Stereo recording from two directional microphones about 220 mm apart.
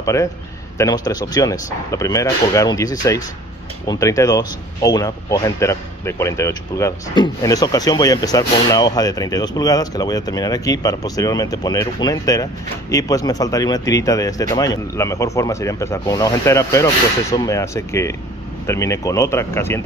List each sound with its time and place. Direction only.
0.0 s a man's voice: 15° left (ahead or behind)